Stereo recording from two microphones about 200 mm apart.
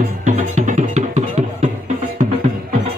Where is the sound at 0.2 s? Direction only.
35° right (ahead or behind).